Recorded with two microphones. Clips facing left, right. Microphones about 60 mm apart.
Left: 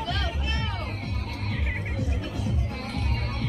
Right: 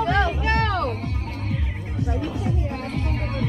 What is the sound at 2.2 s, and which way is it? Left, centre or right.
Music, right.